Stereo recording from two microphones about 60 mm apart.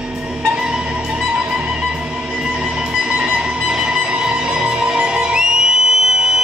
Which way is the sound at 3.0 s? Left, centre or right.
Centre.